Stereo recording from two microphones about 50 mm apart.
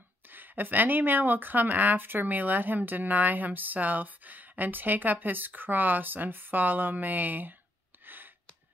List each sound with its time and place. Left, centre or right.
0.3 s speech: right